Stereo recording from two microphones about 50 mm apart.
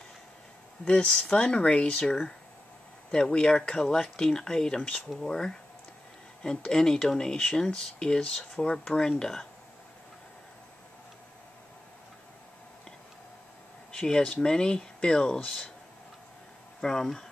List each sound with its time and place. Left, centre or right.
0.8 s speech: centre
2.0 s speech: centre
13.9 s speech: centre
16.8 s speech: centre